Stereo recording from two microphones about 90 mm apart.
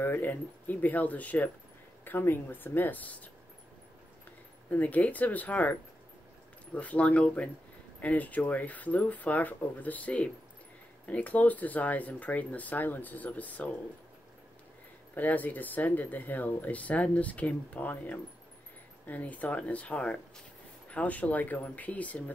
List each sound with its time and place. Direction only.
0.0 s speech: 25° left (ahead or behind)
4.6 s speech: 20° left (ahead or behind)
15.1 s speech: 20° left (ahead or behind)